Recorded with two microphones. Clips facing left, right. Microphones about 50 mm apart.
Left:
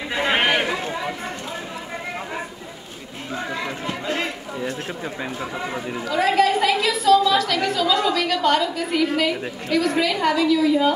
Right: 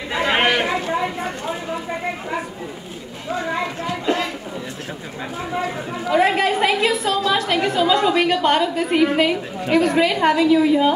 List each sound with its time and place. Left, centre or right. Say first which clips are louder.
0.1 s chatter: right 2 dB; centre
6.0 s a woman's voice: right 1 dB; right